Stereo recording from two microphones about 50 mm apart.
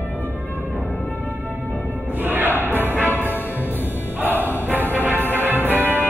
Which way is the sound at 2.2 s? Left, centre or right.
Right.